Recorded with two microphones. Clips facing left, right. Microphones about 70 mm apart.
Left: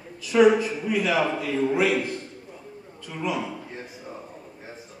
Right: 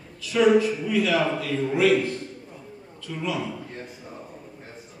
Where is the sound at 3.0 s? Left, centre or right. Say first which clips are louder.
Even; centre.